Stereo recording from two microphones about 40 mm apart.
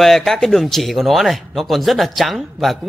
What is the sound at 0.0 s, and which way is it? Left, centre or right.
Speech, centre.